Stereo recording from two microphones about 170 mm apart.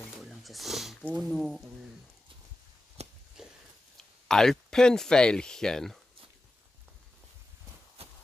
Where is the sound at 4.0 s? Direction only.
5° left (ahead or behind).